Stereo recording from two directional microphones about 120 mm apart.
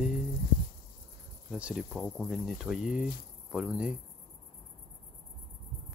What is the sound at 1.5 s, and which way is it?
Speech, 5° right (ahead or behind).